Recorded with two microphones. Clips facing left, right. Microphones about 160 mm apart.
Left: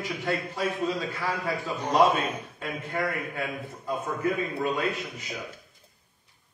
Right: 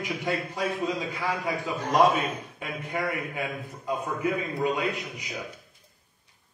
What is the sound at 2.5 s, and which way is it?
Speech, 15° right (ahead or behind).